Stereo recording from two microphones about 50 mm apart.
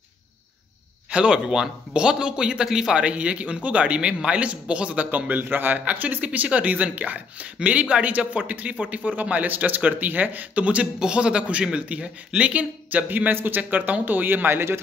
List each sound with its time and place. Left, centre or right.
1.1 s a man's voice: centre
3.0 s a man's voice: right
5.3 s a man's voice: right